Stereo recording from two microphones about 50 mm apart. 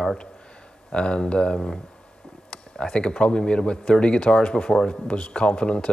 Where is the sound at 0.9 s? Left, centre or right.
Centre.